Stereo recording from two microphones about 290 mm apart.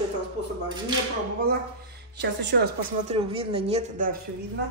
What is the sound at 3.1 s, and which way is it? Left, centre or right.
A woman's voice, centre.